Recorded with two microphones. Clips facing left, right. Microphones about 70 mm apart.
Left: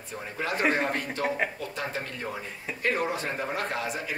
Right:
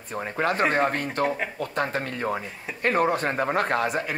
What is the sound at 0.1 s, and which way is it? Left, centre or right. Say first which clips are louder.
Speech: right 6 dB; right.